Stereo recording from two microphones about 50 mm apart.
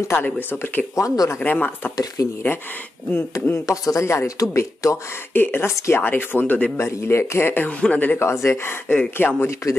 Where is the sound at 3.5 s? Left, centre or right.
Left.